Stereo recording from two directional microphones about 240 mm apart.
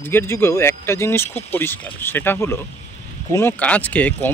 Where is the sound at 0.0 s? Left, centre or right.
Centre.